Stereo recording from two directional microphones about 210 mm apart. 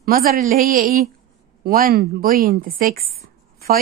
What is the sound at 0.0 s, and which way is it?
A woman's voice, 45° right (ahead or behind).